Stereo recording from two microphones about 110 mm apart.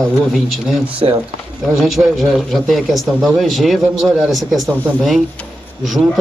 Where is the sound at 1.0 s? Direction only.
45° right (ahead or behind).